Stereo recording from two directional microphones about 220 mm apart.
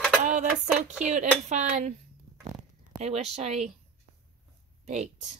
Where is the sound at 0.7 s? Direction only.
5° right (ahead or behind).